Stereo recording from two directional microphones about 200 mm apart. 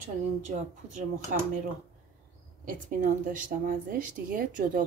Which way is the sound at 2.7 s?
40° right (ahead or behind).